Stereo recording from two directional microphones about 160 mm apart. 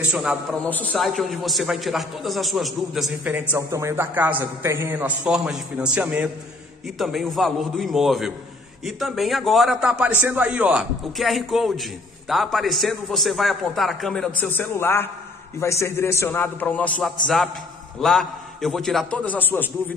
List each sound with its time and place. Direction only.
0.1 s a man's voice: 5° right (ahead or behind)
0.7 s a man's voice: 5° left (ahead or behind)